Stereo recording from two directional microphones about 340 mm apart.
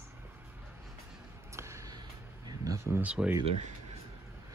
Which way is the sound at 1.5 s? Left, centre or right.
Centre.